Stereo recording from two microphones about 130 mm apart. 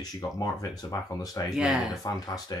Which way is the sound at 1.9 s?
30° left (ahead or behind).